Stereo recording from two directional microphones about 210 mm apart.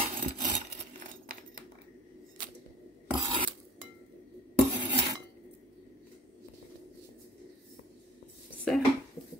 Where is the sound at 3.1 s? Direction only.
25° right (ahead or behind).